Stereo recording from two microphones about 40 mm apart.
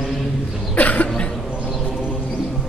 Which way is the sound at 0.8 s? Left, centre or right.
Left.